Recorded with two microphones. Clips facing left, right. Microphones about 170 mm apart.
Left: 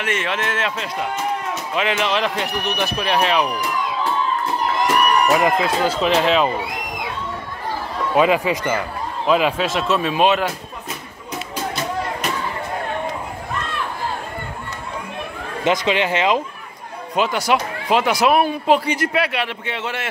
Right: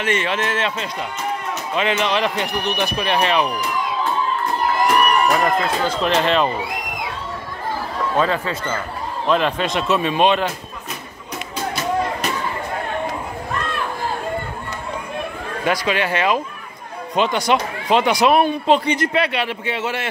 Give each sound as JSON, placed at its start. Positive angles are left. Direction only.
{"t": 0.0, "sound": "speech", "side_deg": 0}
{"t": 5.3, "sound": "speech", "side_deg": 10}
{"t": 8.2, "sound": "speech", "side_deg": 15}
{"t": 15.6, "sound": "speech", "side_deg": 20}
{"t": 17.1, "sound": "speech", "side_deg": 5}